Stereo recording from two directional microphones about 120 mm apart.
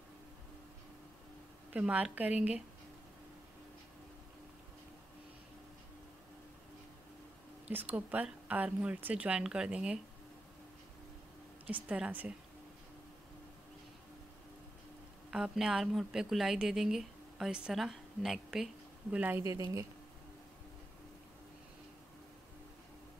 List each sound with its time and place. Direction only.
1.7 s speech: 10° right (ahead or behind)
7.6 s speech: 10° right (ahead or behind)
11.6 s speech: 10° right (ahead or behind)
15.3 s speech: 5° right (ahead or behind)
19.4 s speech: 25° right (ahead or behind)